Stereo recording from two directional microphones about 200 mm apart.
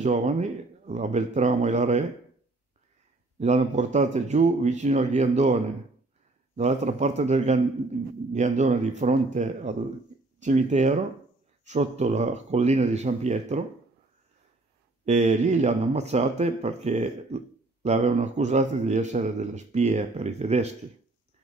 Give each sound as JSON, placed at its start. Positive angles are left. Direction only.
{"t": 0.0, "sound": "a man's voice", "side_deg": -35}
{"t": 3.3, "sound": "a man's voice", "side_deg": -35}
{"t": 15.0, "sound": "a man's voice", "side_deg": -35}